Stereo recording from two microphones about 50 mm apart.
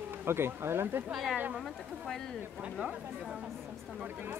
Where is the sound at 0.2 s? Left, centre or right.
Right.